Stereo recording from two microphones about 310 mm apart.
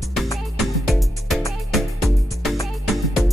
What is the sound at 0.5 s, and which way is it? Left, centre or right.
Music, centre.